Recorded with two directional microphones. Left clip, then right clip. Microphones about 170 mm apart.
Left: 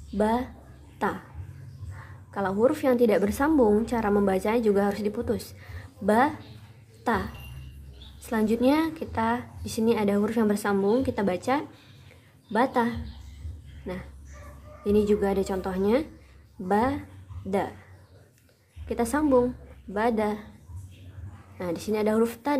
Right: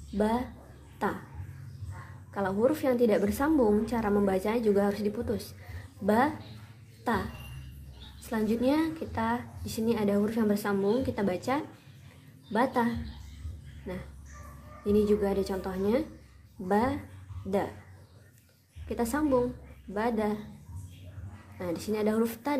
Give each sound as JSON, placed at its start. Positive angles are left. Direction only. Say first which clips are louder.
{"t": 0.2, "sound": "a woman's voice", "louder": "left 4 dB", "side_deg": 10}
{"t": 2.3, "sound": "a woman's voice", "louder": "left 3 dB", "side_deg": 15}
{"t": 8.2, "sound": "a woman's voice", "louder": "left 5 dB", "side_deg": 15}
{"t": 18.9, "sound": "a woman's voice", "louder": "left 4 dB", "side_deg": 10}
{"t": 21.5, "sound": "a woman's voice", "louder": "left 4 dB", "side_deg": 10}